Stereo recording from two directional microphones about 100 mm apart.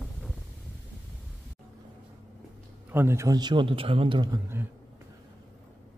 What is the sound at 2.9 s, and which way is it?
Speech, 25° right (ahead or behind).